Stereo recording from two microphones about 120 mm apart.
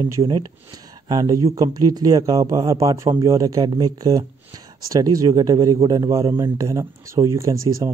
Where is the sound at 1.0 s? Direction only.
35° right (ahead or behind).